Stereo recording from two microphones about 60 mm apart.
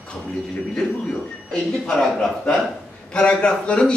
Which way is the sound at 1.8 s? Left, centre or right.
Centre.